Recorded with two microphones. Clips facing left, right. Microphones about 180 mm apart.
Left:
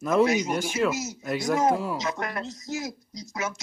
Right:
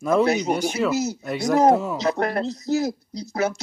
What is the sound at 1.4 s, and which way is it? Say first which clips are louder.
Speech: right 7 dB; 35° right (ahead or behind).